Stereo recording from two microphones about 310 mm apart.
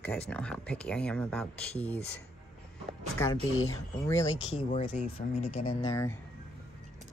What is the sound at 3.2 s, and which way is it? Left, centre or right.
Speech, centre.